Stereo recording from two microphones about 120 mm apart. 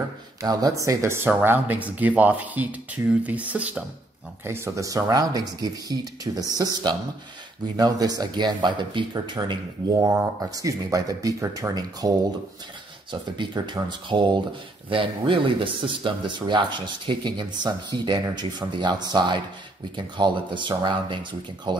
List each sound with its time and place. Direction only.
0.4 s speech: 30° right (ahead or behind); by 3.8 s 10° right (ahead or behind)
4.5 s speech: 25° right (ahead or behind)
13.1 s speech: 40° right (ahead or behind)